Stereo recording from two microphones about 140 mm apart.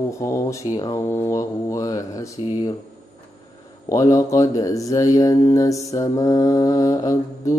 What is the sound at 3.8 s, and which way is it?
Speech, 25° left (ahead or behind).